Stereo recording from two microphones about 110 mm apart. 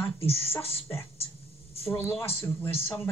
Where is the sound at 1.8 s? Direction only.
20° left (ahead or behind).